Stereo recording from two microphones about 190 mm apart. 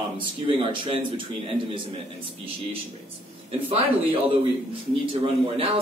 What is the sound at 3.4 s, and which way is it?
Speech, 30° right (ahead or behind).